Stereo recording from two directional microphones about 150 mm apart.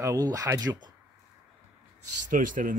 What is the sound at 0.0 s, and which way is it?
Speech, 25° right (ahead or behind).